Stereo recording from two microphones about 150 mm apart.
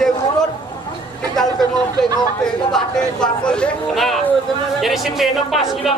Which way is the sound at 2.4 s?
5° left (ahead or behind).